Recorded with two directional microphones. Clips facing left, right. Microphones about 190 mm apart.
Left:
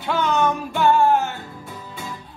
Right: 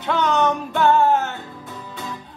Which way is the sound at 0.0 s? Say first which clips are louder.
Right 1 dB; 5° left (ahead or behind).